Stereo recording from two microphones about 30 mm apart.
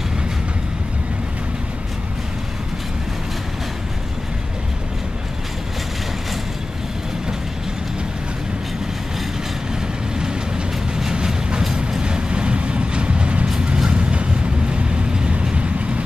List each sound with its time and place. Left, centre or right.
12.0 s vehicle: right